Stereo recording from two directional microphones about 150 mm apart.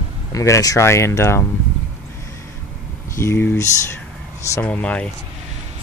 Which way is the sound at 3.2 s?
15° left (ahead or behind).